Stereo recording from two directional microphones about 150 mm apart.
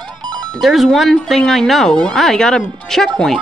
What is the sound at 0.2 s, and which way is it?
Music, 30° right (ahead or behind).